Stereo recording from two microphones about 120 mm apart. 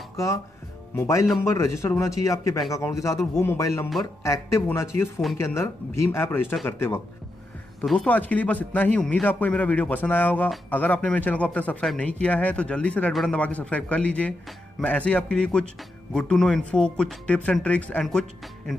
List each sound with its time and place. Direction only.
0.1 s speech: 25° left (ahead or behind)
7.8 s speech: 5° left (ahead or behind)